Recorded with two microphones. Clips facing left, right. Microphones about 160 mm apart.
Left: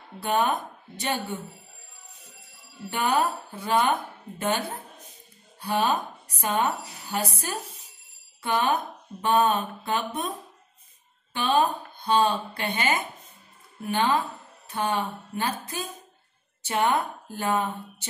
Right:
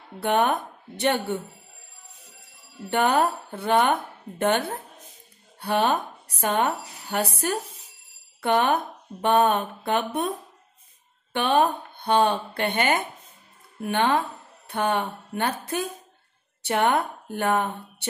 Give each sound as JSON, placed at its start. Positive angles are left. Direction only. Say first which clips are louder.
{"t": 0.2, "sound": "speech", "louder": "right 3 dB", "side_deg": -65}
{"t": 2.9, "sound": "speech", "louder": "right 3 dB", "side_deg": -60}
{"t": 11.3, "sound": "speech", "louder": "right 2 dB", "side_deg": -60}